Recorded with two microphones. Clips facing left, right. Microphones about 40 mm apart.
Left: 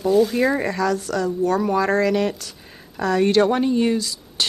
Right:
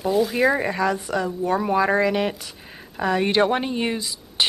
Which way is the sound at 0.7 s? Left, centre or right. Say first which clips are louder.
Left 1 dB; right.